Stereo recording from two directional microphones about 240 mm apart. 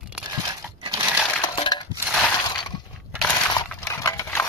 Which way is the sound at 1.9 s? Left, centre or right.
Centre.